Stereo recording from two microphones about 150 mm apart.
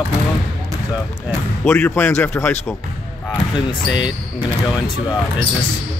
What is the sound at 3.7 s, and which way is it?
Speech, 30° left (ahead or behind).